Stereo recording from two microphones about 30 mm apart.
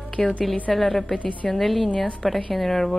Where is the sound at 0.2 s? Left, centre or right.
Centre.